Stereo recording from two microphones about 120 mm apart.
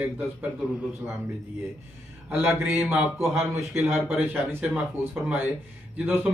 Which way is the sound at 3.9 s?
15° right (ahead or behind).